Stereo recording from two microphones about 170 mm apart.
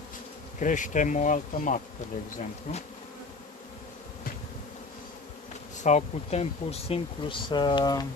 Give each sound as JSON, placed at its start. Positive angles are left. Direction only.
{"t": 0.6, "sound": "bee", "side_deg": 50}
{"t": 5.8, "sound": "speech", "side_deg": 45}